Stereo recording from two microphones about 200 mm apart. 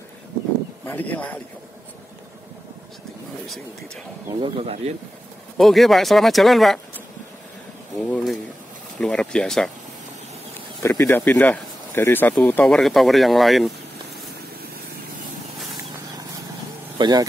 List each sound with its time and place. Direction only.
0.8 s speech: 10° left (ahead or behind)
3.4 s speech: centre (ahead or behind)
4.3 s speech: 25° right (ahead or behind)
5.6 s speech: centre (ahead or behind)
8.1 s speech: centre (ahead or behind)
10.8 s speech: 15° left (ahead or behind)
17.0 s speech: 20° right (ahead or behind)